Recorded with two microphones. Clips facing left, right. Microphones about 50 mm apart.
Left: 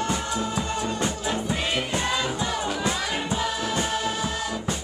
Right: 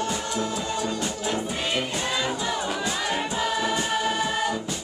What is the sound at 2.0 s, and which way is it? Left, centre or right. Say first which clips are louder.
Music: even; centre.